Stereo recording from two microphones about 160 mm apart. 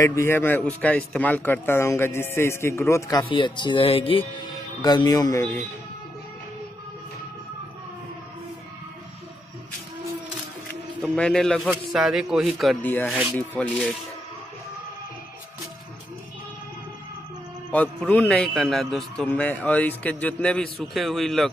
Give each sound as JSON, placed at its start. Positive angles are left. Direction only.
{"t": 0.0, "sound": "a man's voice", "side_deg": 15}
{"t": 11.1, "sound": "a man's voice", "side_deg": 5}
{"t": 12.8, "sound": "a man's voice", "side_deg": 10}
{"t": 17.6, "sound": "a man's voice", "side_deg": 10}